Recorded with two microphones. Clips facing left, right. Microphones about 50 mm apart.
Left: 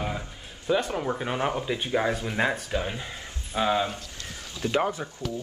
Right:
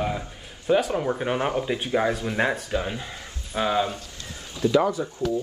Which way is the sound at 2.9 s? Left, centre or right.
Centre.